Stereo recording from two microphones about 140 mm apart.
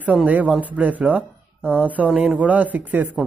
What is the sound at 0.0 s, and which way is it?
Speech, 10° right (ahead or behind).